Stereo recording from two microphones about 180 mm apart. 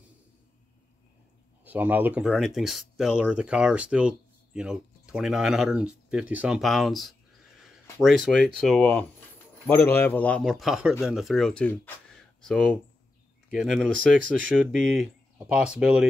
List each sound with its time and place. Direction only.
1.6 s speech: 10° right (ahead or behind)
13.9 s speech: 90° right
14.6 s speech: 5° right (ahead or behind)